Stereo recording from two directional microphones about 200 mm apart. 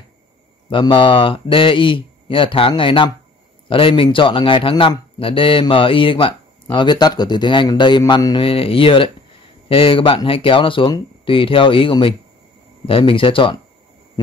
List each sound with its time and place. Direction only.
0.7 s a man's voice: 25° left (ahead or behind)